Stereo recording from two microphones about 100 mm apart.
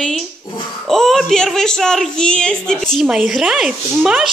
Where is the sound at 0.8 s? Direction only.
Centre (ahead or behind).